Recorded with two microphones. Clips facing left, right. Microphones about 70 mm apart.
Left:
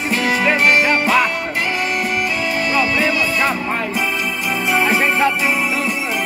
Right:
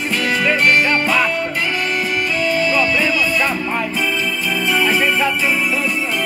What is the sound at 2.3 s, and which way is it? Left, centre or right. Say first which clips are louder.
Music: right 4 dB; left.